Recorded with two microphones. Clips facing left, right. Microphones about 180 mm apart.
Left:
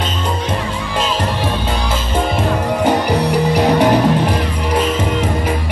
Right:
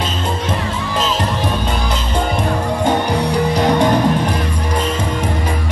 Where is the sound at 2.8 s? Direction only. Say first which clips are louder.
Left 2 dB; 10° left (ahead or behind).